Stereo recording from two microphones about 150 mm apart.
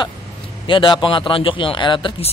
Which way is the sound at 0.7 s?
35° left (ahead or behind).